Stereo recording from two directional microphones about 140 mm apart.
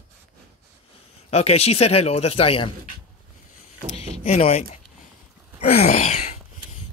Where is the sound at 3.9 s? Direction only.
50° left (ahead or behind).